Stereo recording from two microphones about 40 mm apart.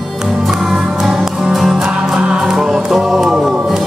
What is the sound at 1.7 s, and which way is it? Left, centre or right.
Music, centre.